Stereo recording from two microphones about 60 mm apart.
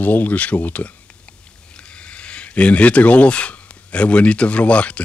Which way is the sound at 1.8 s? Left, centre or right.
Centre.